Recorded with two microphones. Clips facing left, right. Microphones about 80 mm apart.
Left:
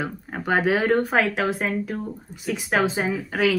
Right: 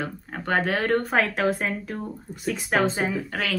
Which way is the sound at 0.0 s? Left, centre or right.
Centre.